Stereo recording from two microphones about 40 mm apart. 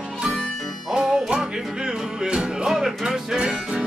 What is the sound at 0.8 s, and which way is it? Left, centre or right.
Music, centre.